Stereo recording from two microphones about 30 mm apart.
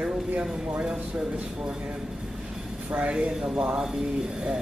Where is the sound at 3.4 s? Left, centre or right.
Right.